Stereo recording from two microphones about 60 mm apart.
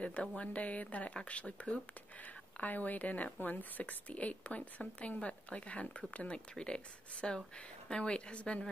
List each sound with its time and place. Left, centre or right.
0.0 s speech: left